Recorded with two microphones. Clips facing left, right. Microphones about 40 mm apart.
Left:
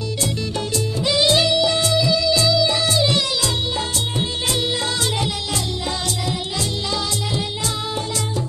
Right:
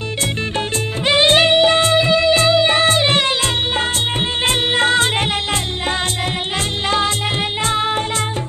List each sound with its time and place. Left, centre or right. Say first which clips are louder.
1.0 s music: right 5 dB; right
4.5 s music: right 9 dB; right